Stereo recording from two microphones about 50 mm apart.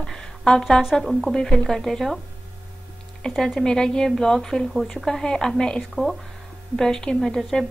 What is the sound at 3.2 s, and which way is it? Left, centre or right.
A woman's voice, centre.